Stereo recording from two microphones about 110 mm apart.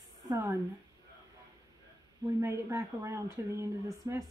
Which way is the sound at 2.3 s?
25° right (ahead or behind).